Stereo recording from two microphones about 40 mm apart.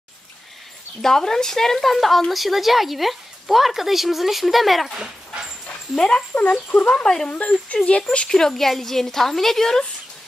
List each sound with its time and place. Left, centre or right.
1.0 s a woman's voice: centre
4.9 s dog: right
5.9 s speech: centre
6.3 s speech: left
8.3 s a woman's voice: centre